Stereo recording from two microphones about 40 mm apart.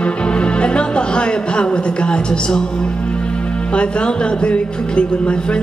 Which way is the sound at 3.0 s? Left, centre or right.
Left.